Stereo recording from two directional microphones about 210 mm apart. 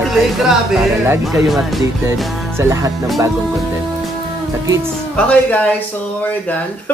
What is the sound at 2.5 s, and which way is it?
Music, 15° right (ahead or behind).